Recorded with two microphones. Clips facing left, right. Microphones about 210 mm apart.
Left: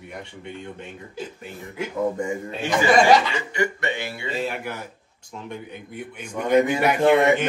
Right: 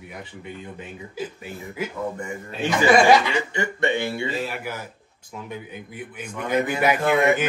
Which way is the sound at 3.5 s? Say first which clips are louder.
Left 1 dB; 25° right (ahead or behind).